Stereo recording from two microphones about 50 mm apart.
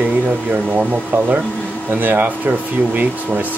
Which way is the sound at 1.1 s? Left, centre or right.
Right.